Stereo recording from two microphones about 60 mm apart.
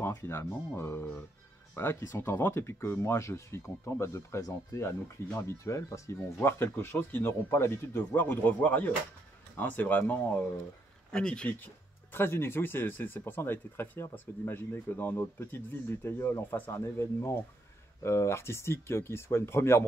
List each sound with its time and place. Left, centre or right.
0.2 s speech: left
4.7 s speech: left
7.1 s speech: left
11.1 s speech: centre
12.1 s speech: left
16.8 s speech: left